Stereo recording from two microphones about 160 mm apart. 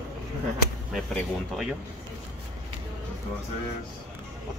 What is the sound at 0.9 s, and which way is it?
Speech, centre (ahead or behind).